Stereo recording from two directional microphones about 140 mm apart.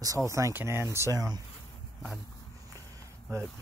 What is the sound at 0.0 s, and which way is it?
Speech, 25° right (ahead or behind).